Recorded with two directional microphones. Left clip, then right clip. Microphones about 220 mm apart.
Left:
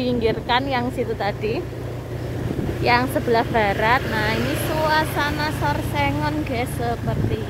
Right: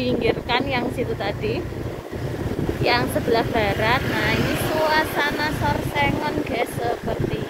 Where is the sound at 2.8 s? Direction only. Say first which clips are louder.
Left 2 dB; 20° left (ahead or behind).